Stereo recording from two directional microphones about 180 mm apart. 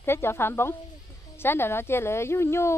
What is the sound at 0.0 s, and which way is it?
Speech, 15° left (ahead or behind).